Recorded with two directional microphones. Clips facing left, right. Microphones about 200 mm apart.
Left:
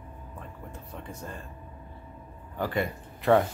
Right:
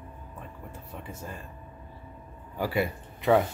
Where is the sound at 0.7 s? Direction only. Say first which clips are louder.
Even; 5° right (ahead or behind).